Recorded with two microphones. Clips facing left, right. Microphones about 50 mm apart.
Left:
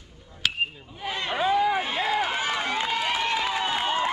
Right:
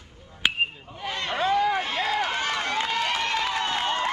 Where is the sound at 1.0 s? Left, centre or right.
Centre.